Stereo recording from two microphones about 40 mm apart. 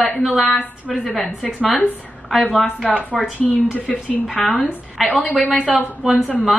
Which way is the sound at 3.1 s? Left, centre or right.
Centre.